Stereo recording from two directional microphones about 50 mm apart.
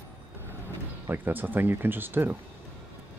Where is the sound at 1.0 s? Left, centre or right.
Right.